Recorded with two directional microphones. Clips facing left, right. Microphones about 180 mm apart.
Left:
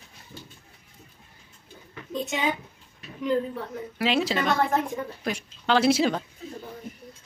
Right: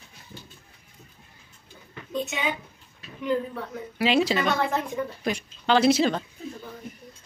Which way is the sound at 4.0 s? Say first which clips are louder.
Right 2 dB; centre (ahead or behind).